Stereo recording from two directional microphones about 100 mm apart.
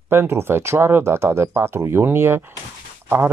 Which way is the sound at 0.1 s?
25° right (ahead or behind).